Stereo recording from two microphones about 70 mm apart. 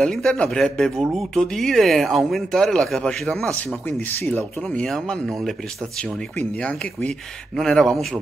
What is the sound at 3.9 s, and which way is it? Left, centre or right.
Speech, left.